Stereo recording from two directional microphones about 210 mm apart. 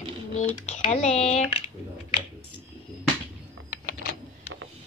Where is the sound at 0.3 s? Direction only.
35° left (ahead or behind).